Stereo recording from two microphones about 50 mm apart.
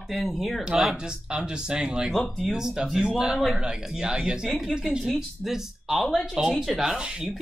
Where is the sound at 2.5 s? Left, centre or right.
Centre.